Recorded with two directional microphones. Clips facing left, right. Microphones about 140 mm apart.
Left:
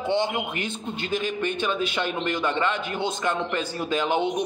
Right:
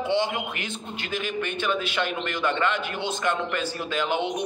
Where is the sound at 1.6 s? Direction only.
20° left (ahead or behind).